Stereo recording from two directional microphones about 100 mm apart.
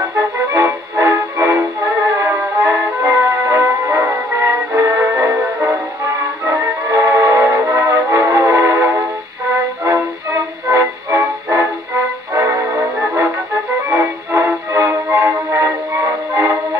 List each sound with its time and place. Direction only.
0.5 s music: 25° right (ahead or behind)
13.8 s music: 25° right (ahead or behind)